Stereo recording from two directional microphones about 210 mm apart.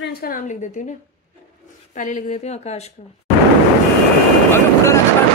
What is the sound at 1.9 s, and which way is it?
Speech, 35° left (ahead or behind).